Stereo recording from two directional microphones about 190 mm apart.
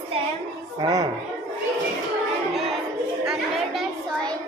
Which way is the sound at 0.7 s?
20° right (ahead or behind).